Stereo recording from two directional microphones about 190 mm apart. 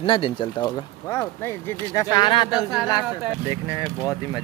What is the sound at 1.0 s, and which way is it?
Speech, 15° left (ahead or behind).